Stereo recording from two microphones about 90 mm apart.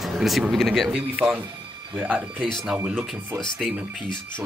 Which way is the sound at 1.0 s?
10° right (ahead or behind).